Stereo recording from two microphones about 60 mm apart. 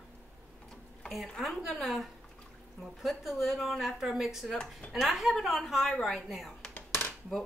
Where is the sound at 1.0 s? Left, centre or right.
Centre.